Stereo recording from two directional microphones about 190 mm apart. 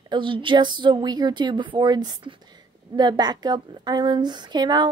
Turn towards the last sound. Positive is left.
turn(degrees=-20)  # may be behind; listen again after turning